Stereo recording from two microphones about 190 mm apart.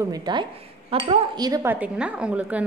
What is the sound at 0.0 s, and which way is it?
Speech, 20° right (ahead or behind).